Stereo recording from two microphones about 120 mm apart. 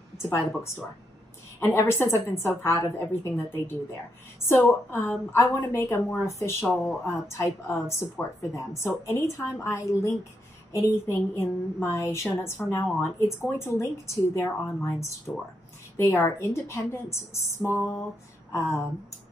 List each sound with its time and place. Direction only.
0.2 s a woman's voice: 20° left (ahead or behind)
1.6 s a woman's voice: 20° left (ahead or behind)